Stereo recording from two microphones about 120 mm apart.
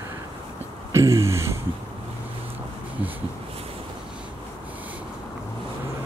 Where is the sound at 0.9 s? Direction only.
25° right (ahead or behind).